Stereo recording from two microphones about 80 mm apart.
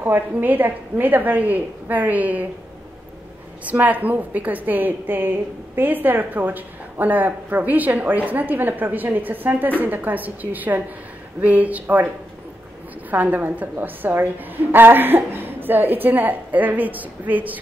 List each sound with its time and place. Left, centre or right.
0.0 s a woman's voice: right
3.6 s a woman's voice: right
13.1 s a woman's voice: right